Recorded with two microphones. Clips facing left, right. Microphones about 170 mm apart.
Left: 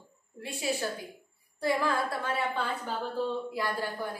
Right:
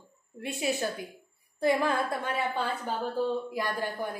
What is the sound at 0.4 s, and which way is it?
A woman's voice, 20° right (ahead or behind).